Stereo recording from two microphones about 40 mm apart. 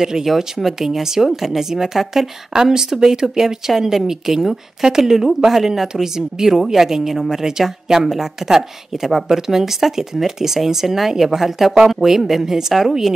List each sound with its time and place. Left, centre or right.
0.0 s speech: centre